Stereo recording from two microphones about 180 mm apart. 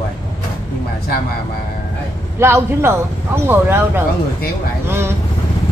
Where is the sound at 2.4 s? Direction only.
15° right (ahead or behind).